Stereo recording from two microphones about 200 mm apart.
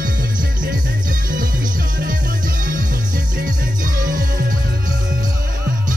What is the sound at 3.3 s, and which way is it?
Music, 40° right (ahead or behind).